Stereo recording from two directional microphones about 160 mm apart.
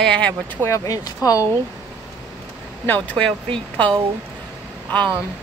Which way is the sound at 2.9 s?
10° left (ahead or behind).